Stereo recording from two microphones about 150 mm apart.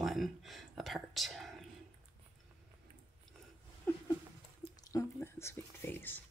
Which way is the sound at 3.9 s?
15° left (ahead or behind).